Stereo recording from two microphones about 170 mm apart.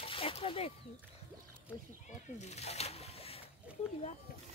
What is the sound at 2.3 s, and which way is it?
Speech, 40° left (ahead or behind).